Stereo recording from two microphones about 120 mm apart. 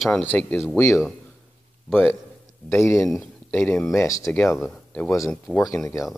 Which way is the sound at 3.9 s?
25° left (ahead or behind).